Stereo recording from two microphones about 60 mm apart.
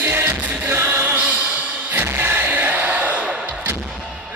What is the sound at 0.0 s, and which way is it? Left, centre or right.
Music, right.